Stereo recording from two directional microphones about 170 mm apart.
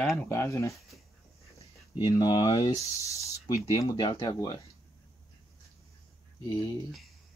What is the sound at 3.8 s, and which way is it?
Speech, 30° left (ahead or behind).